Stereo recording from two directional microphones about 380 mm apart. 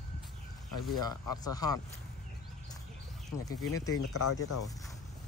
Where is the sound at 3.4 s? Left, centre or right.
Centre.